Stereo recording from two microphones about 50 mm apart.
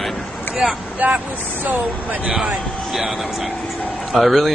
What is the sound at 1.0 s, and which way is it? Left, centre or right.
Speech, right.